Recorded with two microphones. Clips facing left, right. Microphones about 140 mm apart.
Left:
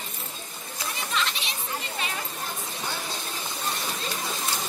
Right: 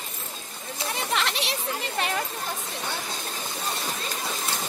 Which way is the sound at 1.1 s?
70° right (ahead or behind).